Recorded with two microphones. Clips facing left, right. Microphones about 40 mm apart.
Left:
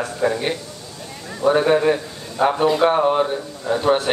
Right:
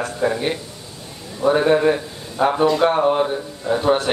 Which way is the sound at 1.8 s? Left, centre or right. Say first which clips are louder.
Right 1 dB; centre.